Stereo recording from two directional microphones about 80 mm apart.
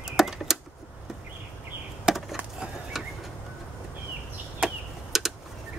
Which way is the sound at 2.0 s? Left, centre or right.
Centre.